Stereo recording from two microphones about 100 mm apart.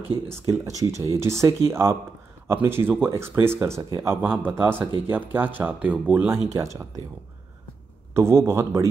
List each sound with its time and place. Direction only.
0.1 s speech: 30° right (ahead or behind)
8.1 s speech: 25° right (ahead or behind)